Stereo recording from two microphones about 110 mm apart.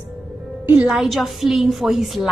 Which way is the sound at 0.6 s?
5° right (ahead or behind).